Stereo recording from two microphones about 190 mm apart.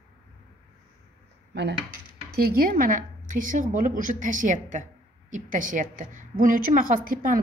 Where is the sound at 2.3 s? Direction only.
50° right (ahead or behind).